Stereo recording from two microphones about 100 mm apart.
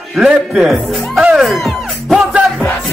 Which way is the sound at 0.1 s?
5° right (ahead or behind).